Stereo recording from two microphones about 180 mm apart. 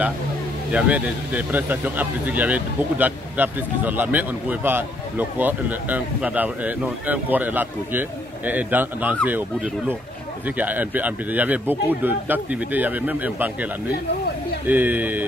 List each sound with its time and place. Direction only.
0.7 s speech: 5° right (ahead or behind)
10.6 s speech: 10° right (ahead or behind)
14.7 s speech: 10° right (ahead or behind)